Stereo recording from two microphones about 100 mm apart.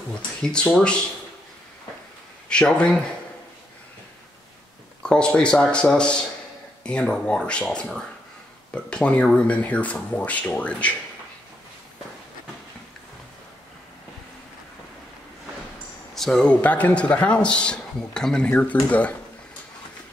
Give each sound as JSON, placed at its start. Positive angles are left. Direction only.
{"t": 0.4, "sound": "a man's voice", "side_deg": 10}
{"t": 2.5, "sound": "a man's voice", "side_deg": 10}
{"t": 5.0, "sound": "a man's voice", "side_deg": 10}
{"t": 16.2, "sound": "a man's voice", "side_deg": 5}